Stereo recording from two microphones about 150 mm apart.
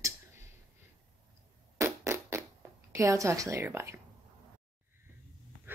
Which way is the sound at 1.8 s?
20° right (ahead or behind).